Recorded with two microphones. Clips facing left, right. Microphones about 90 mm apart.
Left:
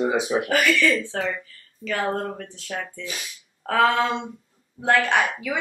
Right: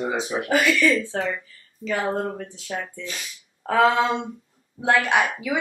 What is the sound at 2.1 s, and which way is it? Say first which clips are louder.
A woman's voice: right 1 dB; 10° right (ahead or behind).